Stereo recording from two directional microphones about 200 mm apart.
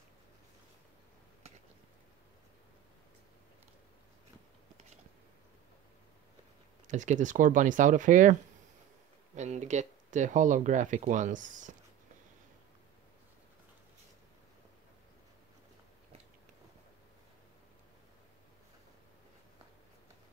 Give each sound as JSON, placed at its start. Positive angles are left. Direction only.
{"t": 6.9, "sound": "speech", "side_deg": -40}